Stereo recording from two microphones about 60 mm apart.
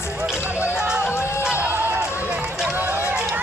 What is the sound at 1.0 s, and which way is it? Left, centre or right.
Music, left.